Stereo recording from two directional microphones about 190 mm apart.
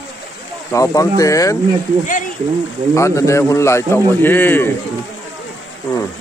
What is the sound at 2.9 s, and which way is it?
A man's voice, 15° left (ahead or behind).